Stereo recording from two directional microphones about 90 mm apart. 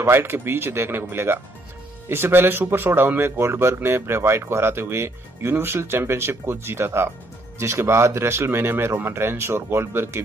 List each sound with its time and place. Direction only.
0.0 s speech: 25° right (ahead or behind)